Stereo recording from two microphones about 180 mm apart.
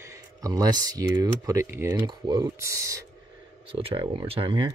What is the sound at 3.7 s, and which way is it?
Speech, 30° right (ahead or behind).